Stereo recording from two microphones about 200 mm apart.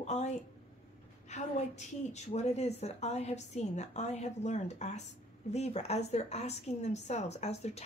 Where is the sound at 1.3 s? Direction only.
35° left (ahead or behind).